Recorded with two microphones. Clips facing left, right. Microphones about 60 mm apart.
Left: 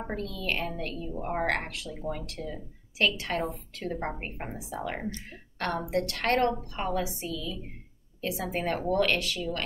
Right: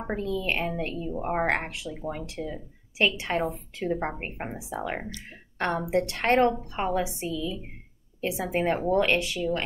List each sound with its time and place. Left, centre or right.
0.0 s a woman's voice: right
7.3 s speech: centre
8.2 s a woman's voice: right